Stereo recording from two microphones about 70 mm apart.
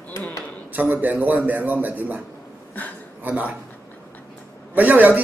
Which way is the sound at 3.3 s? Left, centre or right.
Right.